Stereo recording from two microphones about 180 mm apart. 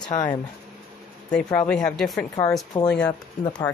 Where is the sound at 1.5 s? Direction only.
5° left (ahead or behind).